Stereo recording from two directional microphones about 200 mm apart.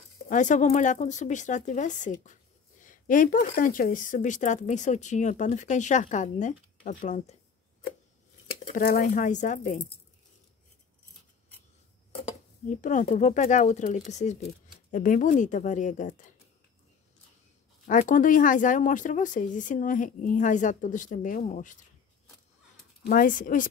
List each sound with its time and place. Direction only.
0.3 s speech: 40° left (ahead or behind)
8.7 s speech: 45° left (ahead or behind)
12.6 s speech: 40° left (ahead or behind)
17.8 s speech: 40° left (ahead or behind)
23.0 s speech: 45° left (ahead or behind)